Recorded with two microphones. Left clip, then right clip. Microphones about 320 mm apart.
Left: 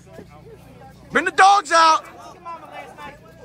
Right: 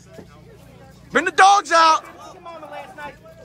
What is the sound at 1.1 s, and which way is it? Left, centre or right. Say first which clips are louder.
Speech: even; centre.